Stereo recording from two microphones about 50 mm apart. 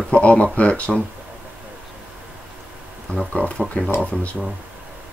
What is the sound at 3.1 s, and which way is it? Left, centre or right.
Speech, left.